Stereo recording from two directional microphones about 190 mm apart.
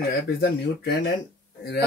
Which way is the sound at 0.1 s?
55° left (ahead or behind).